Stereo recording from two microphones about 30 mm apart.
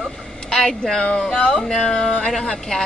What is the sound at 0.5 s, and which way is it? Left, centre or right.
A woman's voice, left.